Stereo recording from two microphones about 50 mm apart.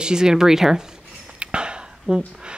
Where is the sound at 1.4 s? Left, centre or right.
Centre.